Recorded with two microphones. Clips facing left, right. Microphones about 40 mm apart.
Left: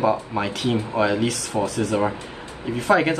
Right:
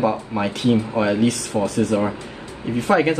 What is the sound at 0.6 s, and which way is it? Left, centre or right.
Speech, left.